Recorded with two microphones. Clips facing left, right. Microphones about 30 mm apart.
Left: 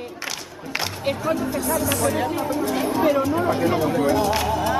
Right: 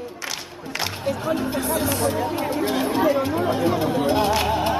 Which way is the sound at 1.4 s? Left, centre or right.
Right.